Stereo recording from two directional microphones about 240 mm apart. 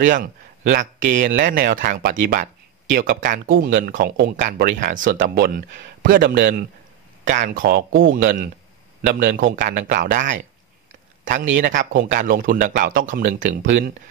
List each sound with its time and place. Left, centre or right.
0.0 s speech: right
0.9 s speech: right
11.4 s speech: right
12.0 s speech: right